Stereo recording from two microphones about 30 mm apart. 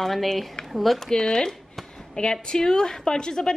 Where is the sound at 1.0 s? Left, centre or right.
Left.